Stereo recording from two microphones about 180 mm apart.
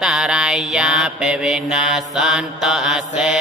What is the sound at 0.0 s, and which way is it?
Mantra, 5° right (ahead or behind).